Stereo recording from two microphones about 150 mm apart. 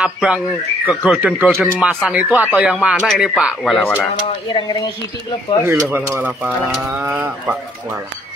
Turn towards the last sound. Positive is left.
turn(degrees=-10)  # may be behind; listen again after turning